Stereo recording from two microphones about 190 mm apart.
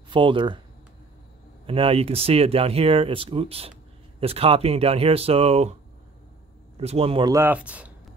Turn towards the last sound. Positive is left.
turn(degrees=-5)  # may be behind; listen again after turning